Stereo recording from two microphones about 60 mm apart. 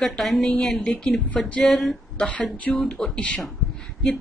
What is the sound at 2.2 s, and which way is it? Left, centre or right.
Speech, left.